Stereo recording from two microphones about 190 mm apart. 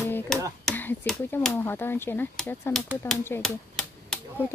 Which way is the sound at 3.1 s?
10° left (ahead or behind).